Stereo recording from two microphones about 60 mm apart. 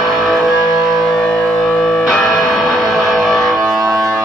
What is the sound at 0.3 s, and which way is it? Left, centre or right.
Music, centre.